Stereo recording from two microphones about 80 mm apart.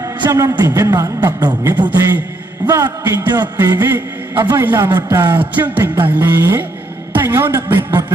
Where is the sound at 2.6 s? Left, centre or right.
Right.